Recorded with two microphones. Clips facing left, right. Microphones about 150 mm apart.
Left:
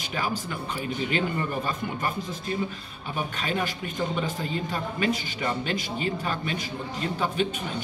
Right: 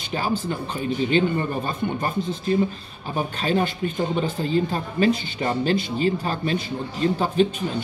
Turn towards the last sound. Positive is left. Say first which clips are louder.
# right 7 dB
turn(degrees=-35)  # may be behind; listen again after turning